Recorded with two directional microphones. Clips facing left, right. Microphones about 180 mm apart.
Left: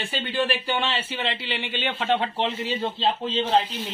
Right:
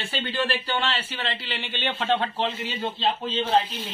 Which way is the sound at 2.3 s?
25° left (ahead or behind).